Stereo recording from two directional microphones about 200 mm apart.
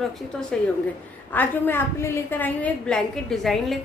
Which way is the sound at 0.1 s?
5° left (ahead or behind).